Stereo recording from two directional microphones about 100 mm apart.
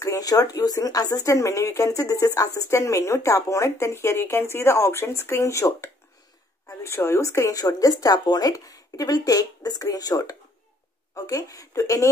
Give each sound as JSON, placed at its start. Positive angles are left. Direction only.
{"t": 0.0, "sound": "speech", "side_deg": 35}